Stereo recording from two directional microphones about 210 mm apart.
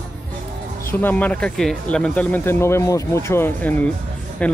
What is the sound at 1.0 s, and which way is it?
Speech, 10° left (ahead or behind).